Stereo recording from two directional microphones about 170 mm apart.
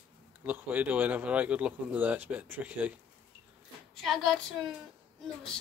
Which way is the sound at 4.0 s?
Centre (ahead or behind).